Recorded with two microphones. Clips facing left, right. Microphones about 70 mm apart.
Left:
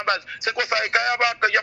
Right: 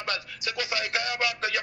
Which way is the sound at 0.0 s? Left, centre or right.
Left.